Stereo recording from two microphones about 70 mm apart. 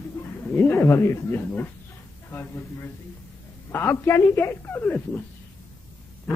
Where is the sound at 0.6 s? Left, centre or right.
Left.